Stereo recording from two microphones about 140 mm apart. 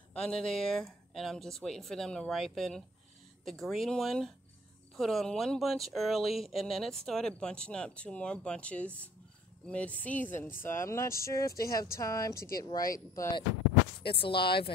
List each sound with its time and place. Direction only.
0.1 s speech: 5° left (ahead or behind); by 13.3 s 25° left (ahead or behind)
14.0 s speech: 40° left (ahead or behind)